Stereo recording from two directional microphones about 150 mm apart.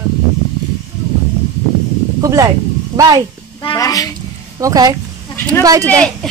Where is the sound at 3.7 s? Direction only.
25° left (ahead or behind).